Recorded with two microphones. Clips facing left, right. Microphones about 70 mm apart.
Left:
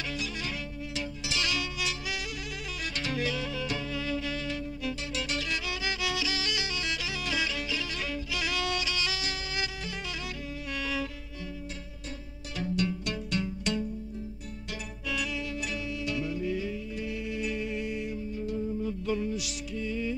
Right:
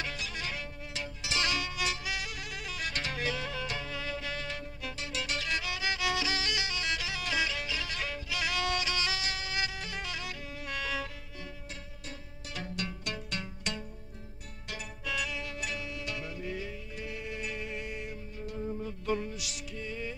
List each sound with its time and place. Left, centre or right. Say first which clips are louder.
0.0 s music: left 2 dB; right
12.5 s music: left 8 dB; right